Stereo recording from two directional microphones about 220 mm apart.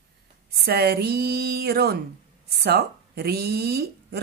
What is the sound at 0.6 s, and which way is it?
A woman's voice, 45° right (ahead or behind).